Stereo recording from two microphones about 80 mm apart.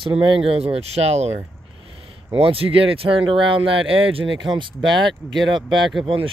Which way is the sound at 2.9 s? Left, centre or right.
Right.